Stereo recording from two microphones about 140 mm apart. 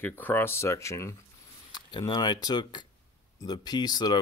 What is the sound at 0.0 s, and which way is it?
Speech, 15° left (ahead or behind).